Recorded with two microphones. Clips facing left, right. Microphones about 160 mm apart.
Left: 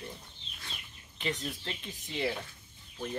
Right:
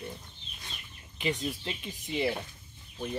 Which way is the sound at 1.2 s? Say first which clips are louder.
Right 4 dB; 10° right (ahead or behind).